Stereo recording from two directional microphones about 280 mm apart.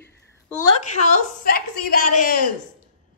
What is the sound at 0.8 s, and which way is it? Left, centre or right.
A woman's voice, left.